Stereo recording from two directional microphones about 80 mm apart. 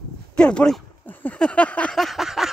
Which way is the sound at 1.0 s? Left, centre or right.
Left.